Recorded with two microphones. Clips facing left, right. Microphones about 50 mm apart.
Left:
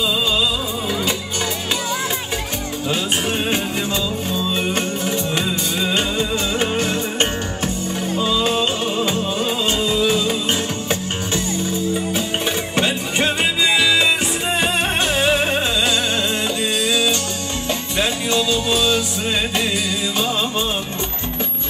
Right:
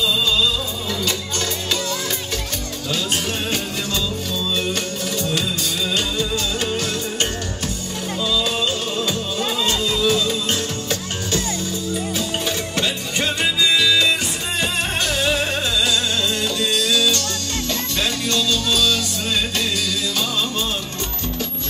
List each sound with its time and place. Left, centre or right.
5.9 s music: left
12.7 s music: left
15.1 s music: left
16.7 s music: left